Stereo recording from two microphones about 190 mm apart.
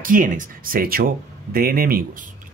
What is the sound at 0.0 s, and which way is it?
Speech, 45° right (ahead or behind).